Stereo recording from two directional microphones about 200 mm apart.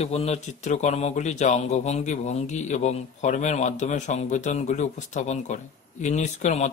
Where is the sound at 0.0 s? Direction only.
30° left (ahead or behind).